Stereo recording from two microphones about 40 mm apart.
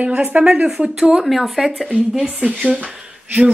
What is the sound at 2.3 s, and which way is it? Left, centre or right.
Speech, right.